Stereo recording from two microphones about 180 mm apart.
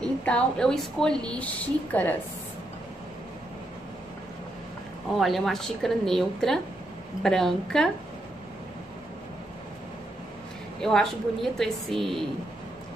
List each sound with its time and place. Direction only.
0.0 s a woman's voice: 5° left (ahead or behind)
5.2 s a woman's voice: centre (ahead or behind)
10.8 s a woman's voice: centre (ahead or behind)